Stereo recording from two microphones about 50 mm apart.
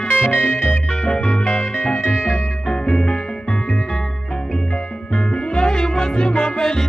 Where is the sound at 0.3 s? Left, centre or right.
Left.